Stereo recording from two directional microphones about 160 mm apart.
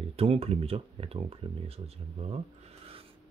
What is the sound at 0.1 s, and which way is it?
Speech, 40° right (ahead or behind).